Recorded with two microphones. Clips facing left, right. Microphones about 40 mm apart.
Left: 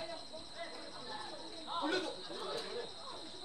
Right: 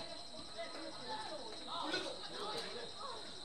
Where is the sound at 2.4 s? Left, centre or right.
Centre.